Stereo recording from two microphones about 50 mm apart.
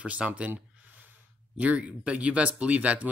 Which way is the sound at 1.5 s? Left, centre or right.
Right.